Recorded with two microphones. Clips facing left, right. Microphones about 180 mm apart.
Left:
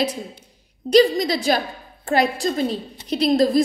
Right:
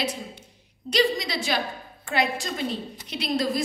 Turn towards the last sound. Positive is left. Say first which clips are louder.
# left 9 dB
turn(degrees=35)  # may be behind; listen again after turning